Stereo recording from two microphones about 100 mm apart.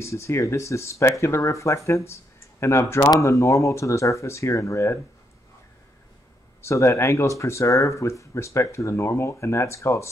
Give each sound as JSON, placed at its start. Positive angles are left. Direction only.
{"t": 0.0, "sound": "speech", "side_deg": 30}
{"t": 6.6, "sound": "speech", "side_deg": 30}